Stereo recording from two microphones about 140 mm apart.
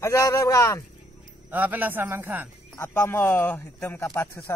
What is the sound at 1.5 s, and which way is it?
Speech, 10° right (ahead or behind).